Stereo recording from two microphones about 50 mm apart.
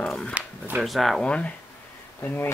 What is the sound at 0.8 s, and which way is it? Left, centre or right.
Speech, centre.